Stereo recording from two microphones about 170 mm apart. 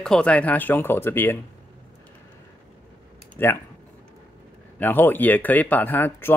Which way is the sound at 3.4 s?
10° left (ahead or behind).